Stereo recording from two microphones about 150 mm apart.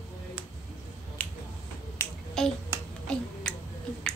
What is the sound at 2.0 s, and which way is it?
Finger snapping, 15° left (ahead or behind).